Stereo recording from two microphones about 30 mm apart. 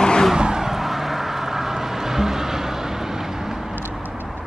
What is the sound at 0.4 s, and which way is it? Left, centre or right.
Vehicle, right.